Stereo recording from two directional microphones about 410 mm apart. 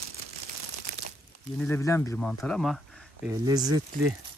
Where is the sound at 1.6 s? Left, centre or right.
Centre.